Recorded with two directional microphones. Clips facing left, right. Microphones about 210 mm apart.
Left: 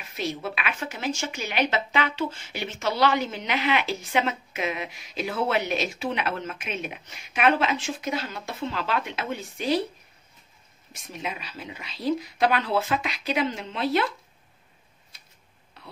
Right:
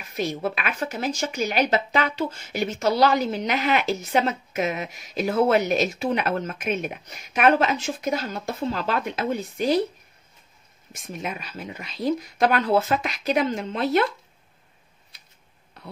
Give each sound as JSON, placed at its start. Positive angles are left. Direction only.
{"t": 0.1, "sound": "speech", "side_deg": -45}
{"t": 10.9, "sound": "speech", "side_deg": -50}